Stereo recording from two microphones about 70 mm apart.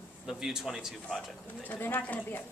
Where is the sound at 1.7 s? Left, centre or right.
Left.